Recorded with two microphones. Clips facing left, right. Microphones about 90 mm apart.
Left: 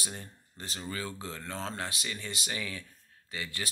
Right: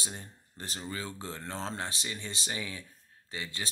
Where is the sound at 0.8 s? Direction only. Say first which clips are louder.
Left 1 dB; 20° right (ahead or behind).